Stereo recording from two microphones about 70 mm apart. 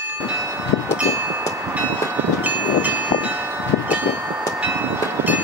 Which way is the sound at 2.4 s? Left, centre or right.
Right.